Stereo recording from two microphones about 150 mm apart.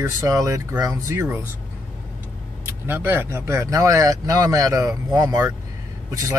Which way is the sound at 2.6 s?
15° right (ahead or behind).